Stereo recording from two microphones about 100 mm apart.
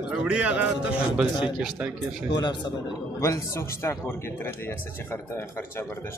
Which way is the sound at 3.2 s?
30° left (ahead or behind).